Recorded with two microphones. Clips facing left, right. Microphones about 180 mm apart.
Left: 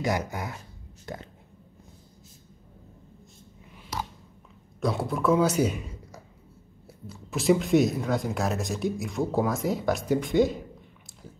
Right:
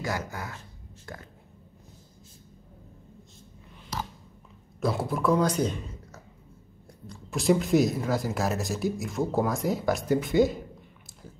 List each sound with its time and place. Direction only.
0.0 s speech: 20° left (ahead or behind)
4.7 s a man's voice: centre (ahead or behind)